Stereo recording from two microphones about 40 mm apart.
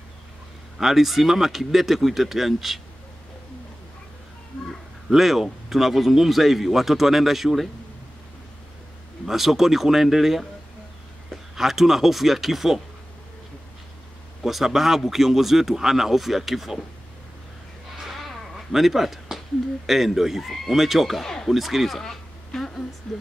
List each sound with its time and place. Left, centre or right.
0.7 s speech: centre
5.1 s speech: centre
9.2 s speech: centre
11.5 s speech: centre
14.4 s speech: centre
18.1 s a sound: centre
19.9 s speech: centre
22.0 s a sound: centre
23.1 s speech: centre